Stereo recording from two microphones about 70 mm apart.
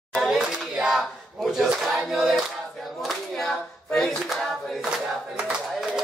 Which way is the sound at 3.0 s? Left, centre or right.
Centre.